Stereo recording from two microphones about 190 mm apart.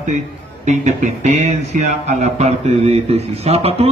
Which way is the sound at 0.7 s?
40° right (ahead or behind).